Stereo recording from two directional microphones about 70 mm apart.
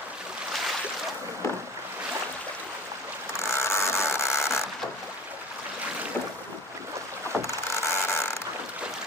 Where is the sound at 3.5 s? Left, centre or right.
Left.